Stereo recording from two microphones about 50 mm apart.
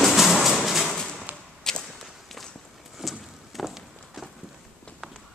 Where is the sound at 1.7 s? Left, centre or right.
Centre.